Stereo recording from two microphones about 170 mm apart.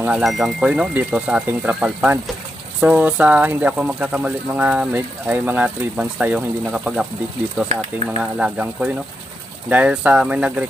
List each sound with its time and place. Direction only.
0.0 s speech: 5° right (ahead or behind)
8.2 s speech: 5° right (ahead or behind)